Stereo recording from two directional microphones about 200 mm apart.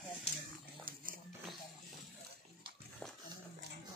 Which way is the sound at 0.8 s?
45° right (ahead or behind).